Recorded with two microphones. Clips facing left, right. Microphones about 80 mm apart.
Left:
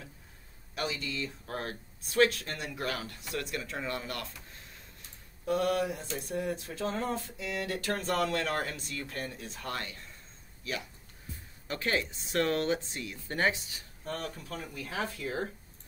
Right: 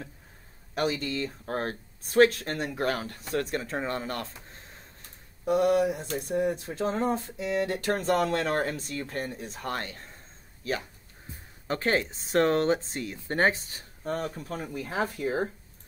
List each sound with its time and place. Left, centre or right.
0.7 s speech: right
5.4 s speech: centre; by 13.8 s right
14.0 s speech: right